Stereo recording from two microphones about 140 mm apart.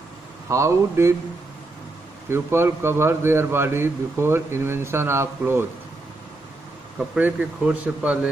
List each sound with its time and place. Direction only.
0.5 s speech: 20° right (ahead or behind)
2.2 s a man's voice: 15° right (ahead or behind)
7.2 s a man's voice: 10° right (ahead or behind)